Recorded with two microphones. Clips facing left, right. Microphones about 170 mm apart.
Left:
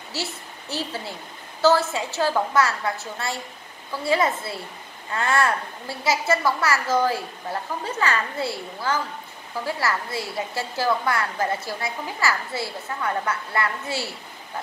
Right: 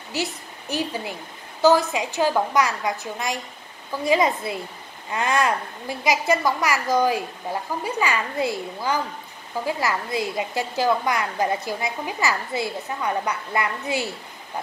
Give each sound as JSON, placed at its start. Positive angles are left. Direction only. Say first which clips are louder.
{"t": 0.1, "sound": "a woman's voice", "louder": "right 4 dB", "side_deg": -15}